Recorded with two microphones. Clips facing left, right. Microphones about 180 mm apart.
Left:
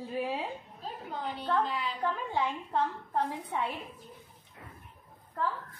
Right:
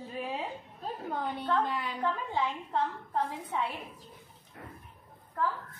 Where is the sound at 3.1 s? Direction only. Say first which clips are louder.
Left 1 dB; 15° left (ahead or behind).